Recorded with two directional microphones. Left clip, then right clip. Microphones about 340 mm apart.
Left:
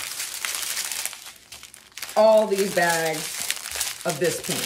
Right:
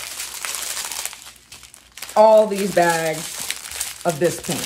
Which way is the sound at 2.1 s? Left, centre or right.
Centre.